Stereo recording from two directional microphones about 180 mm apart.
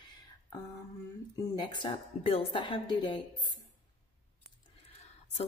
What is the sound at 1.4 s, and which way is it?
A woman's voice, 25° left (ahead or behind).